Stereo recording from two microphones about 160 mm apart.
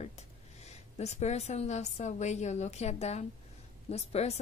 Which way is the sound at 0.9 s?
45° left (ahead or behind).